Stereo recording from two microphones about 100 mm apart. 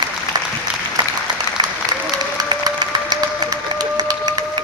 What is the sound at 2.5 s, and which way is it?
Music, 50° right (ahead or behind).